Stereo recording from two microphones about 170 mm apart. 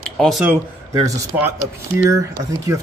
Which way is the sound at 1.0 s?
20° right (ahead or behind).